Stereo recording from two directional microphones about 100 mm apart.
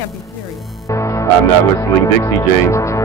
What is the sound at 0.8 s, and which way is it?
Music, 30° left (ahead or behind).